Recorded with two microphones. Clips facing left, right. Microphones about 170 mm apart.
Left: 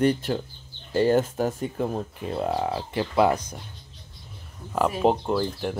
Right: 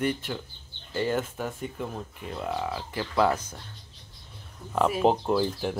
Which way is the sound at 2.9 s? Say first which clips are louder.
Left 3 dB; 20° left (ahead or behind).